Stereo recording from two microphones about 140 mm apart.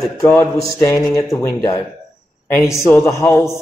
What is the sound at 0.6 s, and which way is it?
Speech, 20° left (ahead or behind).